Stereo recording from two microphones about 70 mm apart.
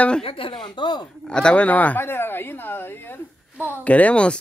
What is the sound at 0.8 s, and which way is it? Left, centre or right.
Speech, left.